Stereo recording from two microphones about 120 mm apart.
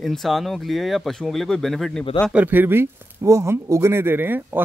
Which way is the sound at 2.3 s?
15° right (ahead or behind).